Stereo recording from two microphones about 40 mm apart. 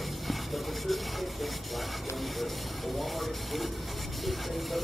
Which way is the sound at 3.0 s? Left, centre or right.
Centre.